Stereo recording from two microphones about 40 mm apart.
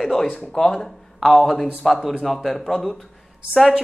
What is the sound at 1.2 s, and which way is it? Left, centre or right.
Speech, centre.